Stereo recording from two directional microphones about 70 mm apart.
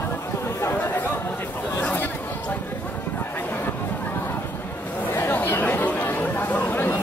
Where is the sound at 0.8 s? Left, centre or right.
Left.